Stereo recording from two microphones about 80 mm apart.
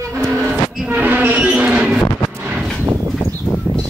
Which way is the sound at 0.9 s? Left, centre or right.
Right.